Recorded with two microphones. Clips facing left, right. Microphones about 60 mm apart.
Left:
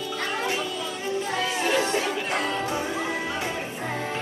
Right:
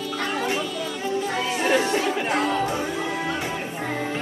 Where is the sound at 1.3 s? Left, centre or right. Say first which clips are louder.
Right 2 dB; right.